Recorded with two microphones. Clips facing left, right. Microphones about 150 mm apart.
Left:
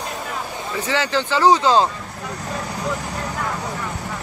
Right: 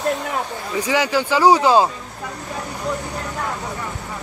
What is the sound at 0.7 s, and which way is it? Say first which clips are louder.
Speech: right 3 dB; 15° right (ahead or behind).